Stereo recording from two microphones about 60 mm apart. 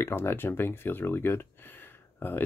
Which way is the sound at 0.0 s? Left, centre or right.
Left.